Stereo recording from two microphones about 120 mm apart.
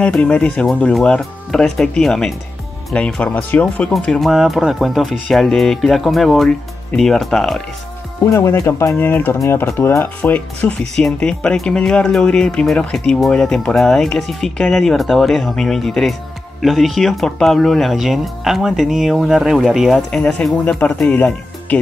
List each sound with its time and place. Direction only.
0.0 s speech: 10° left (ahead or behind)
8.3 s speech: 25° left (ahead or behind)